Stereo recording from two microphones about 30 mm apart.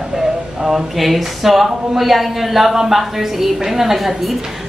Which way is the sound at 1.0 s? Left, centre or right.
Centre.